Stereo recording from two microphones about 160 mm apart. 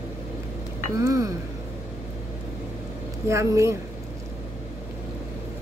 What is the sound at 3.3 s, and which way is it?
Speech, 20° right (ahead or behind).